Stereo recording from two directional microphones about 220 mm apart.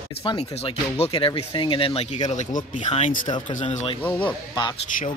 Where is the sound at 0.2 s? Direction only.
20° left (ahead or behind).